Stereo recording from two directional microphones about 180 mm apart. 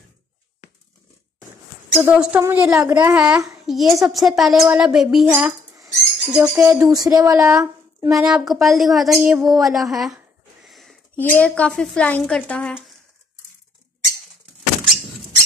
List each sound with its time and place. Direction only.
2.0 s a child's voice: 10° right (ahead or behind)
5.9 s bird: centre (ahead or behind)
6.5 s speech: 15° right (ahead or behind)
8.1 s a woman's voice: 5° right (ahead or behind)